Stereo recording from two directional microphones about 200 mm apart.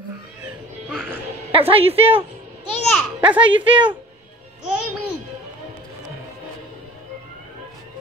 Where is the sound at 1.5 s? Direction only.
30° right (ahead or behind).